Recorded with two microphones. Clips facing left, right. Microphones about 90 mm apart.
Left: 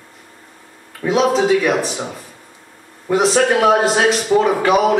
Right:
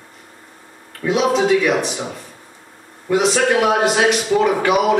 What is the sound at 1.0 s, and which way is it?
Speech, 35° left (ahead or behind).